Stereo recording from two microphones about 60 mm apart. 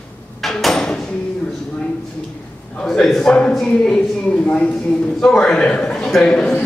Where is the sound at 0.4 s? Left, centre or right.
Centre.